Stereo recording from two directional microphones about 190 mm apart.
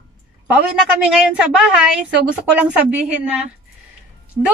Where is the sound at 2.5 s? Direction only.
5° right (ahead or behind).